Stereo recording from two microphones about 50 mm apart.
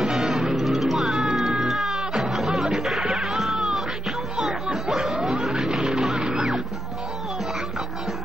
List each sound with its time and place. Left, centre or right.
0.0 s music: centre